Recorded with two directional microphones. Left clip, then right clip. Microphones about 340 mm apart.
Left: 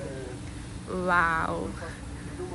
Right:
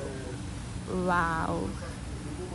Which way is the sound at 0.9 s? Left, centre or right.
Centre.